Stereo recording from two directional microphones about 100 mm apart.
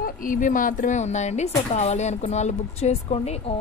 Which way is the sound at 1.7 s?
90° left.